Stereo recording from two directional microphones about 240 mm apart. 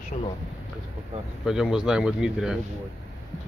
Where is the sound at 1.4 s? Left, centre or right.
Centre.